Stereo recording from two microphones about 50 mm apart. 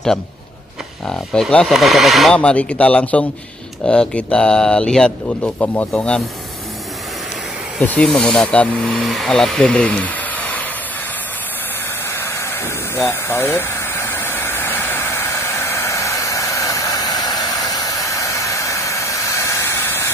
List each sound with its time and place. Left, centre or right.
1.0 s speech: centre
1.7 s speech: centre
2.3 s speech: left
5.4 s speech: left
7.8 s speech: left
8.8 s speech: centre
9.8 s a sound: left
12.1 s a sound: left
18.0 s steam: left